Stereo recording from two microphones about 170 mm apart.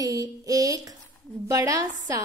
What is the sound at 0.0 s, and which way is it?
A woman's voice, 20° right (ahead or behind).